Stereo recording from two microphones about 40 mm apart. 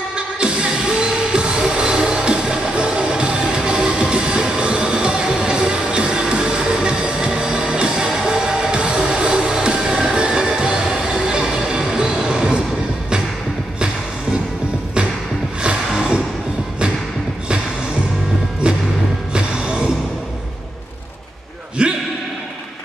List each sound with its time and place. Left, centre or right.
0.1 s music: right
15.6 s music: right
19.3 s music: right
21.8 s a sound: right